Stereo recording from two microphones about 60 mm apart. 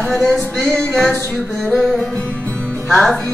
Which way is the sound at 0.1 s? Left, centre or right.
Centre.